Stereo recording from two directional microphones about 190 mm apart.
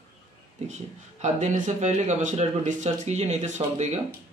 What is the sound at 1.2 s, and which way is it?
Speech, 40° right (ahead or behind).